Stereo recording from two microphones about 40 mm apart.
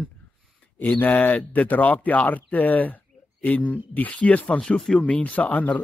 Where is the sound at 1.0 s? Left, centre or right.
Left.